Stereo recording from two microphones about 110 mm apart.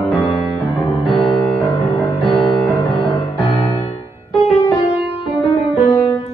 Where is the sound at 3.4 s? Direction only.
65° left (ahead or behind).